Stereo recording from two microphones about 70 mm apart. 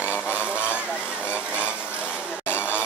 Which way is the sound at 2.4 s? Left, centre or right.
Left.